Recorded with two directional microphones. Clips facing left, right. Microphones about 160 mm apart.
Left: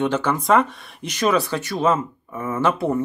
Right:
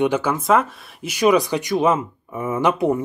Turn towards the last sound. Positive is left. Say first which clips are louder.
# right 2 dB
turn(degrees=-15)  # may be behind; listen again after turning